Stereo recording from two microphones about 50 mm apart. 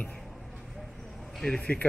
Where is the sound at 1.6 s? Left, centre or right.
Left.